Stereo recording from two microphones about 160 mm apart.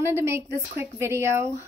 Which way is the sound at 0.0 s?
15° right (ahead or behind).